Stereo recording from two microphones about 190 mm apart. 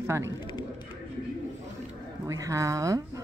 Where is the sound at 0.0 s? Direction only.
15° right (ahead or behind).